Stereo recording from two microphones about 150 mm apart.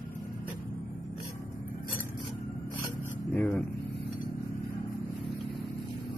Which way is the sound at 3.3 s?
10° left (ahead or behind).